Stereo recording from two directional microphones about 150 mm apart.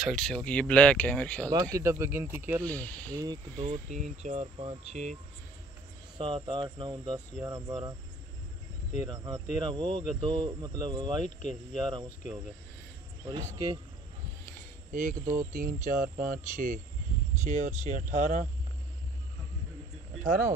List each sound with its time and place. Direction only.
0.0 s speech: 5° left (ahead or behind)
1.5 s speech: 20° right (ahead or behind)
2.6 s speech: 10° left (ahead or behind)
3.1 s speech: 25° right (ahead or behind)
3.5 s speech: 50° right (ahead or behind)
6.1 s speech: 30° right (ahead or behind)
9.0 s speech: 25° right (ahead or behind)
11.7 s cricket: 30° right (ahead or behind)
13.2 s speech: 30° right (ahead or behind)
14.9 s speech: 65° right (ahead or behind)
15.1 s speech: 25° right (ahead or behind)
15.5 s speech: 65° right (ahead or behind)
17.4 s speech: 55° right (ahead or behind)
20.2 s speech: 60° right (ahead or behind)